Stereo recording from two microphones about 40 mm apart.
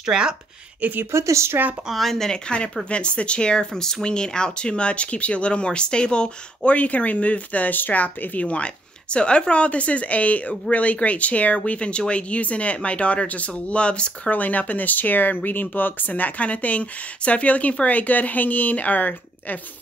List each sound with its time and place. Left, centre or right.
0.0 s speech: centre
0.7 s speech: right
1.9 s speech: centre
2.2 s speech: left
8.5 s speech: left
14.3 s speech: left